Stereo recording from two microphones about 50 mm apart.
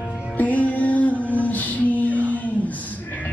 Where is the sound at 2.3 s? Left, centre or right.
Left.